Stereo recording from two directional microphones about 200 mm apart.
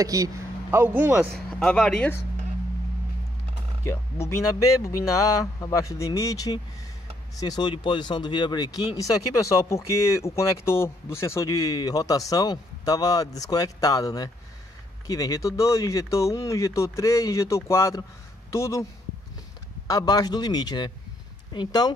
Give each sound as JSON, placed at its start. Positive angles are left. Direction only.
{"t": 0.0, "sound": "a man's voice", "side_deg": -15}
{"t": 1.3, "sound": "speech", "side_deg": 5}
{"t": 3.8, "sound": "speech", "side_deg": 15}
{"t": 19.9, "sound": "speech", "side_deg": 20}